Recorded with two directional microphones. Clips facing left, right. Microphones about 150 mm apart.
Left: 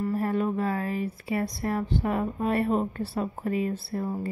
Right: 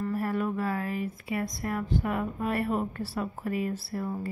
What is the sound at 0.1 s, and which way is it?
A woman's voice, 25° left (ahead or behind).